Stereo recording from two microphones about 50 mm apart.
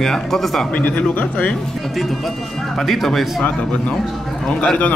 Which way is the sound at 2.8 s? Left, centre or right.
Centre.